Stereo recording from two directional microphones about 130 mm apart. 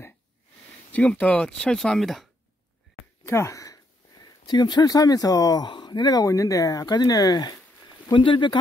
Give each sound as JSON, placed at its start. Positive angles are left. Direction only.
{"t": 0.9, "sound": "speech", "side_deg": 10}
{"t": 3.3, "sound": "speech", "side_deg": 20}